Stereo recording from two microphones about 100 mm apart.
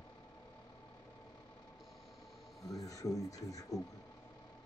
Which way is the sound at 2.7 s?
35° left (ahead or behind).